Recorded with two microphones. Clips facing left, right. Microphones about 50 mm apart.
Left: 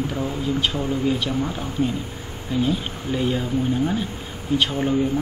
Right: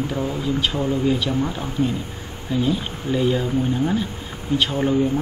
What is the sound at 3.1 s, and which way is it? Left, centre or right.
Speech, centre.